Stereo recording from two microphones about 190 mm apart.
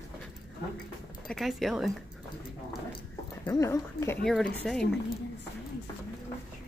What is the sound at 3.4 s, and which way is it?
Speech, 15° left (ahead or behind).